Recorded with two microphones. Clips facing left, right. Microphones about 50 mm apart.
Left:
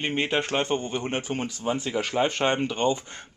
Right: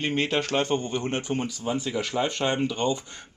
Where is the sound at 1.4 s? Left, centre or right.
Left.